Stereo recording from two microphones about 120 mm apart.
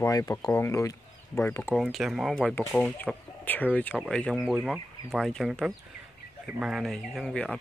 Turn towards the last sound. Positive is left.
turn(degrees=5)  # may be behind; listen again after turning